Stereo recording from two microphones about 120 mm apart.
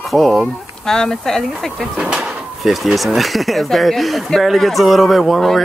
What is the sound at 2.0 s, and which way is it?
Speech, 5° right (ahead or behind).